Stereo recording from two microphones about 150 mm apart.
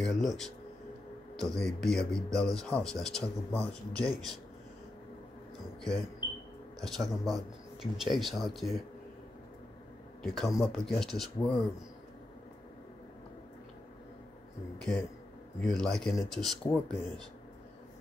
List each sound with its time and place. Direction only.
0.0 s speech: centre (ahead or behind)
6.8 s speech: centre (ahead or behind)
10.2 s speech: centre (ahead or behind)
14.8 s speech: 5° left (ahead or behind)